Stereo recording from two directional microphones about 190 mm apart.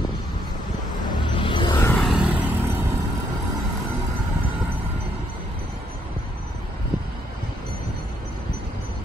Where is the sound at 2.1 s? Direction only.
5° right (ahead or behind).